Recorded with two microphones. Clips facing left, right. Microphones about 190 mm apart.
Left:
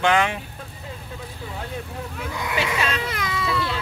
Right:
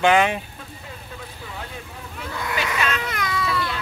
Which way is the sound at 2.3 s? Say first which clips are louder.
Left 1 dB; 20° left (ahead or behind).